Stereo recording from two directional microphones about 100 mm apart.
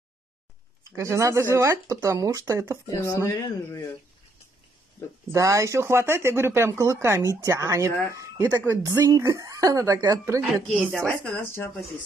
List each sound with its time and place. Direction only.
0.9 s speech: 30° right (ahead or behind)
2.9 s speech: 30° left (ahead or behind)
5.3 s speech: 30° right (ahead or behind)
10.9 s speech: 10° left (ahead or behind)
11.4 s speech: 25° left (ahead or behind)